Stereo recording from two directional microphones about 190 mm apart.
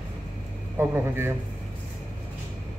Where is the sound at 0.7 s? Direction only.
10° right (ahead or behind).